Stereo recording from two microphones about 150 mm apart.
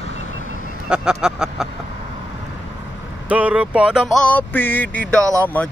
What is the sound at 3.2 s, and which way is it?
Speech, 10° right (ahead or behind).